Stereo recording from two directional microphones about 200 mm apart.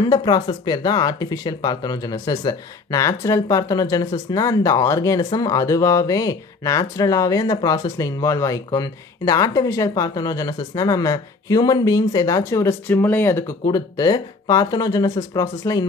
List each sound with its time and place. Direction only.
0.0 s speech: 20° left (ahead or behind)